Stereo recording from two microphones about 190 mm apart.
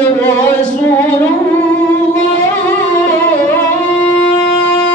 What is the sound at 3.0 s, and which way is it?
Music, 10° left (ahead or behind).